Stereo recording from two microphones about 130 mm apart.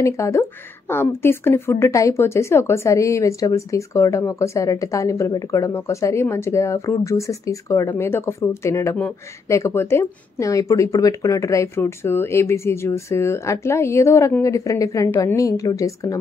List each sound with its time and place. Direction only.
0.0 s speech: 20° left (ahead or behind)